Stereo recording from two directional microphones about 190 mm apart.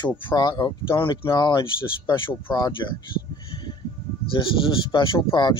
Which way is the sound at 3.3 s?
25° left (ahead or behind).